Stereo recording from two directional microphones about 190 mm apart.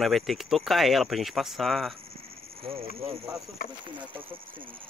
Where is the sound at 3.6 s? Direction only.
50° left (ahead or behind).